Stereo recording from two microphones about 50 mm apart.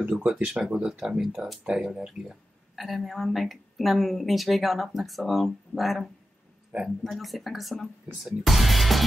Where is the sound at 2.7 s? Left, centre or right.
Centre.